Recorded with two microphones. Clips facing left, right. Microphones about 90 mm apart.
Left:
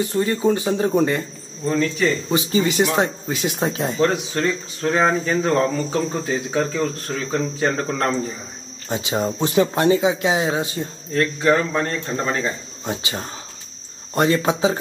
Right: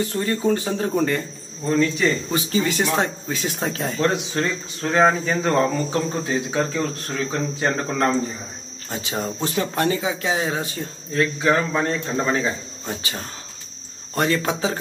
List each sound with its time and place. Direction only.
0.1 s speech: 10° left (ahead or behind)
1.7 s speech: centre (ahead or behind)
2.5 s speech: 15° left (ahead or behind)
4.0 s speech: centre (ahead or behind)
8.8 s speech: 20° left (ahead or behind)
11.1 s speech: 5° right (ahead or behind)
12.8 s speech: 15° left (ahead or behind)